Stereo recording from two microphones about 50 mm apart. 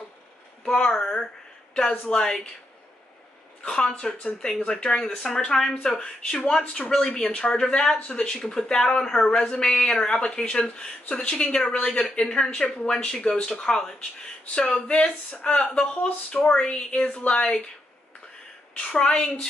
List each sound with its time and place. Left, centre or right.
0.8 s speech: centre
3.6 s speech: left
18.8 s speech: left